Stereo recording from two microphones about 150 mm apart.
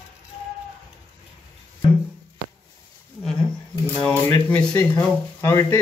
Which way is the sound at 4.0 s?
10° left (ahead or behind).